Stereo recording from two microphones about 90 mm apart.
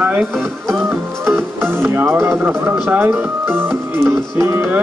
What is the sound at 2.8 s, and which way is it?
Speech, 25° right (ahead or behind).